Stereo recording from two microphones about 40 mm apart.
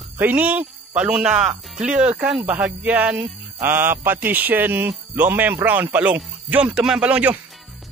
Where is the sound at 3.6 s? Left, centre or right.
Right.